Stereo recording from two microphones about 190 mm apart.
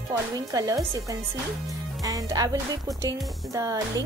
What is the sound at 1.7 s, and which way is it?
Speech, 20° right (ahead or behind).